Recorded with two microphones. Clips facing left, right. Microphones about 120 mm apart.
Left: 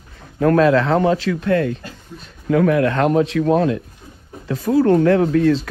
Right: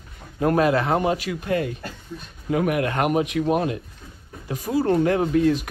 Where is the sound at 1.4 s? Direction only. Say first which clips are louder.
Left 6 dB; 65° left (ahead or behind).